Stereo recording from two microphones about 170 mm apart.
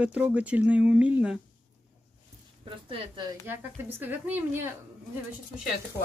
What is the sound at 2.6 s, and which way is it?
Speech, 30° right (ahead or behind).